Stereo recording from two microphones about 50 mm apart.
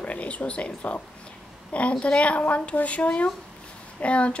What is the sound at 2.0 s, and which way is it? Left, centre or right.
Speech, left.